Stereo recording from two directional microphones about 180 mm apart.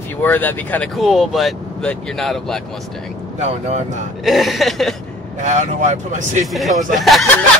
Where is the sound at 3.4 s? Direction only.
40° right (ahead or behind).